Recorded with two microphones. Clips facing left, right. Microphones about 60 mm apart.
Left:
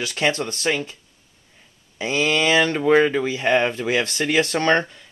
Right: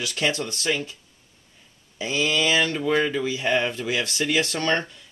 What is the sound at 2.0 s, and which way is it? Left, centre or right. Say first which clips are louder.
Speech: left 3 dB; left.